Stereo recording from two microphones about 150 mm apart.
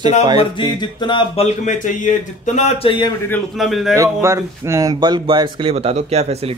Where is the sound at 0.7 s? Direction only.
30° left (ahead or behind).